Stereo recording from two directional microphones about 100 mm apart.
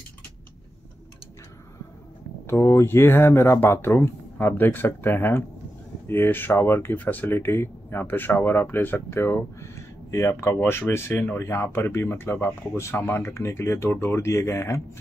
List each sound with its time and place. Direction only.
2.4 s speech: 25° left (ahead or behind)